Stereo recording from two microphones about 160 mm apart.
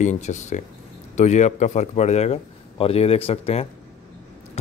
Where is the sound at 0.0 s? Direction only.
50° left (ahead or behind).